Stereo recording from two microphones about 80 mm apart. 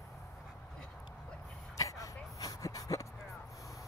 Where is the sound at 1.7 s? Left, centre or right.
Left.